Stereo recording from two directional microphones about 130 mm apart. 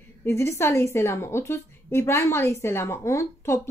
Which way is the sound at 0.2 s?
20° left (ahead or behind).